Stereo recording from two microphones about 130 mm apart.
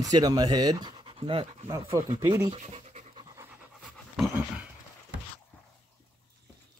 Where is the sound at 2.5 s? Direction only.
60° right (ahead or behind).